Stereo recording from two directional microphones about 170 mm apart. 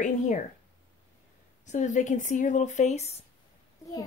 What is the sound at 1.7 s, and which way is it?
Speech, 45° left (ahead or behind).